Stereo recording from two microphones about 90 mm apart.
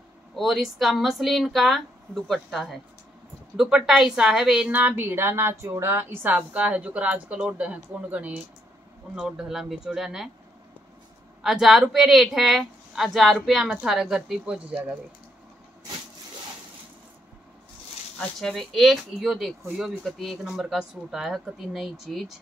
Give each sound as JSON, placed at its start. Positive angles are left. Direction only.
{"t": 0.4, "sound": "a woman's voice", "side_deg": 0}
{"t": 4.6, "sound": "a woman's voice", "side_deg": -20}
{"t": 9.1, "sound": "a woman's voice", "side_deg": -5}
{"t": 11.4, "sound": "a woman's voice", "side_deg": 0}
{"t": 18.2, "sound": "a woman's voice", "side_deg": 5}